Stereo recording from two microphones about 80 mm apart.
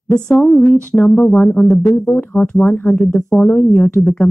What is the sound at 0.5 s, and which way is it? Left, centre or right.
Speech, centre.